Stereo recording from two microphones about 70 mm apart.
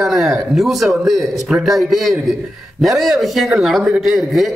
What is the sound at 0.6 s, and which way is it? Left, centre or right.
A man's voice, centre.